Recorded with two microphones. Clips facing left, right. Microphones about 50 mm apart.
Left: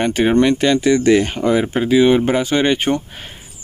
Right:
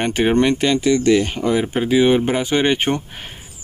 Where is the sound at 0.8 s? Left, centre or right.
Centre.